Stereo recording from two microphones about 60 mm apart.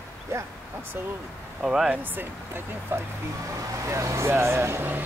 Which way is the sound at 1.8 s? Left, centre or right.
Right.